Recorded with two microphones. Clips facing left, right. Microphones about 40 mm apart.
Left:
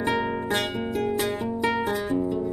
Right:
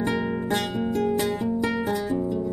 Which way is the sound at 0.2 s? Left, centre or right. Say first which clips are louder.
Even; centre.